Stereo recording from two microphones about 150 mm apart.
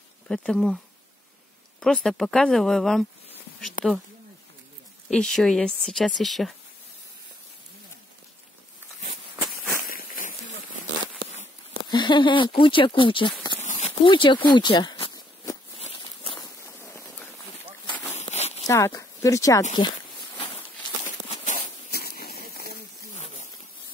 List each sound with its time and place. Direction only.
0.3 s speech: 5° left (ahead or behind)
1.8 s speech: 5° left (ahead or behind)
5.1 s speech: 5° left (ahead or behind)
9.8 s a sound: 70° left (ahead or behind)
11.9 s speech: 30° left (ahead or behind)
13.7 s speech: 45° left (ahead or behind)
15.8 s a sound: 40° left (ahead or behind)
16.4 s walk: 20° left (ahead or behind)
18.1 s a sound: 45° left (ahead or behind)
18.7 s speech: 20° left (ahead or behind)
19.8 s speech: 30° left (ahead or behind)
21.5 s a sound: 90° left